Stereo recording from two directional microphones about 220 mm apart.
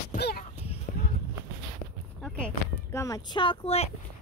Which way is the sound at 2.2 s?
5° left (ahead or behind).